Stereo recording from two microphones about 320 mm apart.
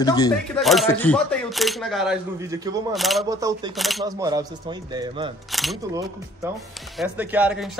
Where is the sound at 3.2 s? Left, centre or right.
Centre.